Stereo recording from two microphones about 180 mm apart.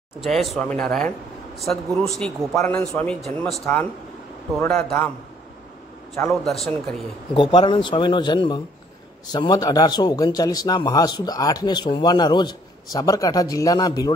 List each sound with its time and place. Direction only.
0.2 s a man's voice: centre (ahead or behind)
6.2 s a man's voice: 10° left (ahead or behind)
7.3 s a man's voice: 25° left (ahead or behind)